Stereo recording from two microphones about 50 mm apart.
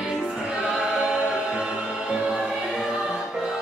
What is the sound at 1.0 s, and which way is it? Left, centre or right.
Music, centre.